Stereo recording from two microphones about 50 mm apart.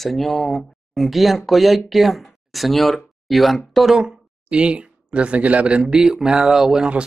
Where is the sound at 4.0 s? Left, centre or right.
Right.